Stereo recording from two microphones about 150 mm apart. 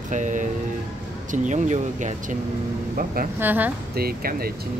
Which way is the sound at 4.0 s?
90° right.